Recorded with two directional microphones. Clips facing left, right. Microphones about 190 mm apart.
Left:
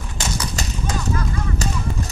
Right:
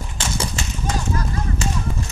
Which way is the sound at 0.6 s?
40° left (ahead or behind).